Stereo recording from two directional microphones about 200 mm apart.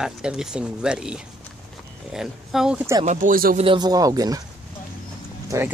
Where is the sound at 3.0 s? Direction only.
40° right (ahead or behind).